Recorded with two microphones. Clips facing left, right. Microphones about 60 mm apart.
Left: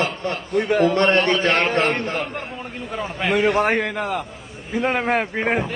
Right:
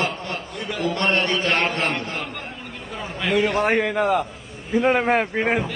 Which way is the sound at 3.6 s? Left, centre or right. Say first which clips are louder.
Right 2 dB; centre.